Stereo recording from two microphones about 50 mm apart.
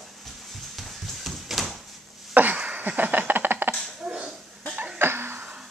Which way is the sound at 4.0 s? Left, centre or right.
Centre.